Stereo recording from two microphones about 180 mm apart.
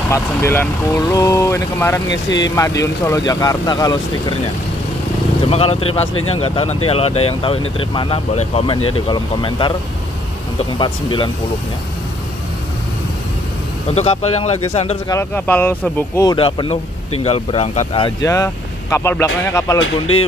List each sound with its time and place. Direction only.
0.1 s speech: 15° left (ahead or behind)
5.5 s speech: 35° left (ahead or behind)
10.8 s speech: 30° left (ahead or behind)
13.9 s speech: 35° left (ahead or behind)
15.0 s speech: 15° left (ahead or behind)
16.3 s speech: 25° left (ahead or behind)